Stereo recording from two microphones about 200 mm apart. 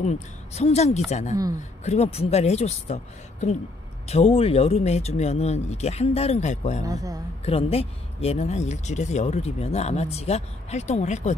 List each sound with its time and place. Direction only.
0.0 s speech: 35° left (ahead or behind)
6.8 s speech: 15° right (ahead or behind)
7.4 s speech: 30° left (ahead or behind)